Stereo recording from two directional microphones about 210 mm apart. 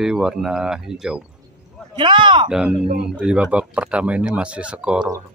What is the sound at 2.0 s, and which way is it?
Speech, 20° right (ahead or behind).